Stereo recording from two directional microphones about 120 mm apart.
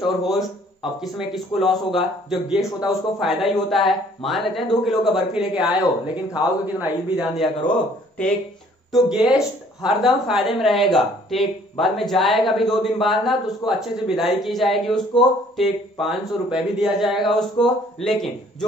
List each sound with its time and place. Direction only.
0.0 s a man's voice: centre (ahead or behind)
8.9 s speech: 5° right (ahead or behind)